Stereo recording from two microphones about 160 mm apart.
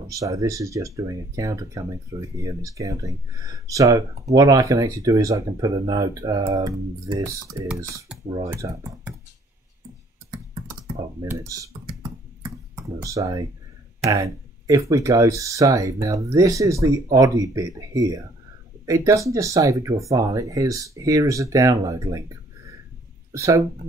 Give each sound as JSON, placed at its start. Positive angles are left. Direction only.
{"t": 0.1, "sound": "speech", "side_deg": -20}
{"t": 11.1, "sound": "computer keyboard", "side_deg": -20}
{"t": 14.1, "sound": "speech", "side_deg": -20}